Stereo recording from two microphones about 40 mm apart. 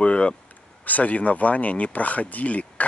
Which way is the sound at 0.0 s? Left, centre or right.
Left.